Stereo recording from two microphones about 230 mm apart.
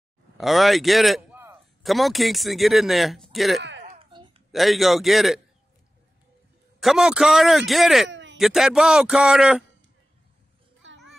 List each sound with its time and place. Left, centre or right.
0.4 s a man's voice: centre
3.8 s a sound: right
4.5 s a man's voice: centre
6.8 s a man's voice: centre
8.1 s a sound: right
8.4 s a man's voice: centre